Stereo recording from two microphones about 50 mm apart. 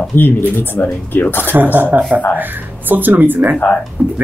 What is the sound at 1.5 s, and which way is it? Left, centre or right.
Speech, right.